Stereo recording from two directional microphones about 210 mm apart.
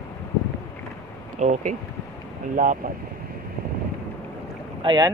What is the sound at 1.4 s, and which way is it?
Speech, 35° right (ahead or behind).